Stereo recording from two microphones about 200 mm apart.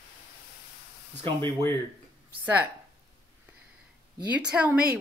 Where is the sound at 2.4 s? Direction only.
10° right (ahead or behind).